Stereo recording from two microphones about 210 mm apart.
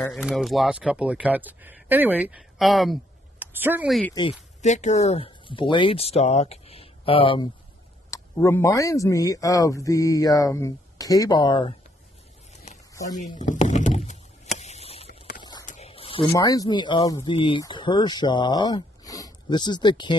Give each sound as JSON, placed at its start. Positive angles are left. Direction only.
{"t": 0.0, "sound": "speech", "side_deg": 0}
{"t": 4.6, "sound": "speech", "side_deg": 35}
{"t": 8.1, "sound": "speech", "side_deg": 15}
{"t": 13.1, "sound": "a sound", "side_deg": 35}
{"t": 16.3, "sound": "speech", "side_deg": 15}